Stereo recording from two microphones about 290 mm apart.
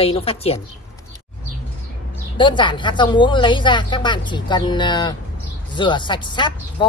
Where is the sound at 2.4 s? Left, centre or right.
Centre.